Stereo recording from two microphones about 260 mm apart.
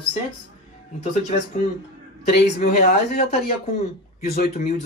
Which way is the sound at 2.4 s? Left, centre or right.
Left.